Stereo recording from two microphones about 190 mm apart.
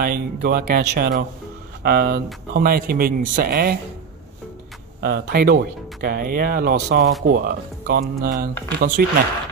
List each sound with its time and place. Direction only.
0.0 s speech: 50° right (ahead or behind)
5.0 s speech: 55° right (ahead or behind)